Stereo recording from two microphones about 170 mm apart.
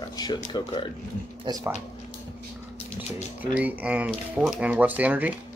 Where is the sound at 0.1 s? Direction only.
25° left (ahead or behind).